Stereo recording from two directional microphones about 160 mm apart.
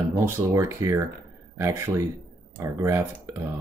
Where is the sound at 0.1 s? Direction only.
20° right (ahead or behind).